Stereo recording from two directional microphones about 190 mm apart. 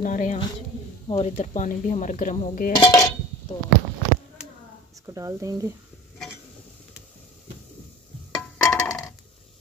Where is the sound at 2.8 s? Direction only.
20° left (ahead or behind).